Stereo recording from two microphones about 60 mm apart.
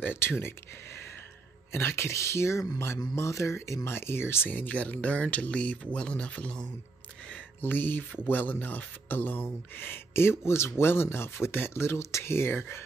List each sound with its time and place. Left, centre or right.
0.0 s speech: left
1.7 s speech: left
4.5 s speech: left
7.6 s speech: left